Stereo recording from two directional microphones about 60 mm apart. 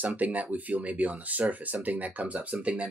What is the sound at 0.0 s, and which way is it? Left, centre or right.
Speech, right.